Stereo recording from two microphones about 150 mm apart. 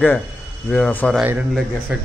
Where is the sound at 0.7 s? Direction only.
5° left (ahead or behind).